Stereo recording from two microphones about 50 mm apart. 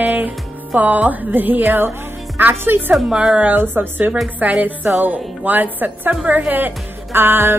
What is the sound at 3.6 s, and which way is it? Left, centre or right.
Music, right.